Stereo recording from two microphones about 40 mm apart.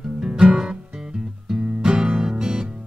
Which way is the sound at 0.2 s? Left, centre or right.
Centre.